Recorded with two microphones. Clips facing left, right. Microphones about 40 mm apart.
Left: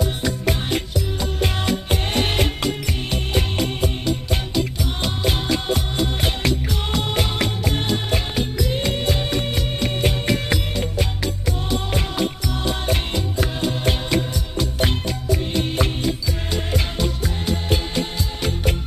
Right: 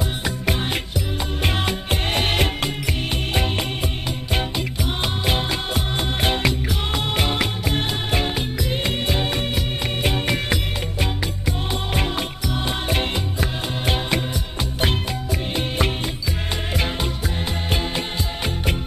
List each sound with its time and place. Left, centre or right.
0.0 s music: centre